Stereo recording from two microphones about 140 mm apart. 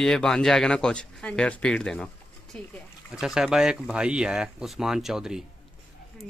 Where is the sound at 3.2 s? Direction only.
5° right (ahead or behind).